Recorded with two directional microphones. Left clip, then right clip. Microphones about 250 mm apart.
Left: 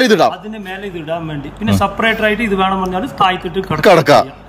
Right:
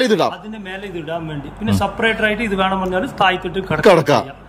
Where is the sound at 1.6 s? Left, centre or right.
Centre.